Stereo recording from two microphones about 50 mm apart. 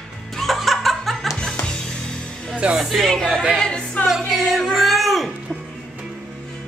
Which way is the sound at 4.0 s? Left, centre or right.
Left.